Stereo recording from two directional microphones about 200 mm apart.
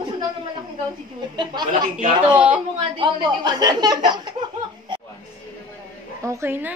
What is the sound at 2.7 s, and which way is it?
A woman's voice, 25° right (ahead or behind).